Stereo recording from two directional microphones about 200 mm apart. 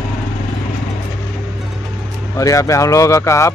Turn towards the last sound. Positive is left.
turn(degrees=15)  # may be behind; listen again after turning